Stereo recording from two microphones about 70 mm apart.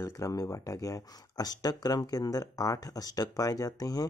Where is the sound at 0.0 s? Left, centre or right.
Left.